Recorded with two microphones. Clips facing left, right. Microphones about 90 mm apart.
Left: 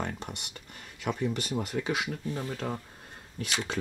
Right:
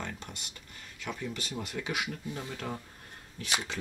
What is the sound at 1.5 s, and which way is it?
Speech, 35° left (ahead or behind).